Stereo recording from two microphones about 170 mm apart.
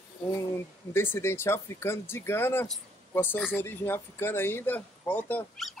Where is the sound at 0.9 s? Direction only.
15° left (ahead or behind).